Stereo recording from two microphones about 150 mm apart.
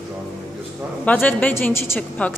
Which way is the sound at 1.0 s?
10° left (ahead or behind).